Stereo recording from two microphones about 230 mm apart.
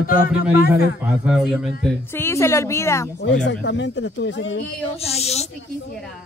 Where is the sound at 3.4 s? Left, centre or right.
Left.